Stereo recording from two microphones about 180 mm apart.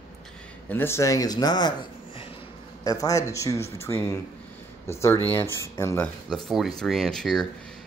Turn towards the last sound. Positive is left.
turn(degrees=0)  # may be behind; listen again after turning